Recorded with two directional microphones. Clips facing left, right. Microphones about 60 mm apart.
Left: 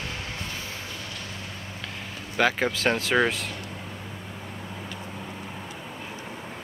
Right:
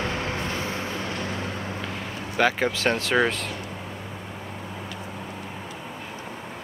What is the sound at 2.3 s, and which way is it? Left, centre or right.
Speech, centre.